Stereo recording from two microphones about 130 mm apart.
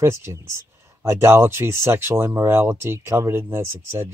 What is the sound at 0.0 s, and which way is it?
Speech, 20° right (ahead or behind).